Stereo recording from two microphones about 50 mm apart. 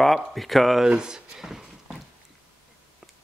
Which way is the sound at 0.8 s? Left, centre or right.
Centre.